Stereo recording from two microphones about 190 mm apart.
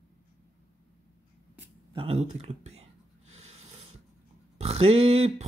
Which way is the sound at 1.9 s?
30° right (ahead or behind).